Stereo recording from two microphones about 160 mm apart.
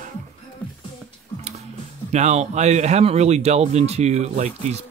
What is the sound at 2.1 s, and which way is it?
Speech, 45° right (ahead or behind).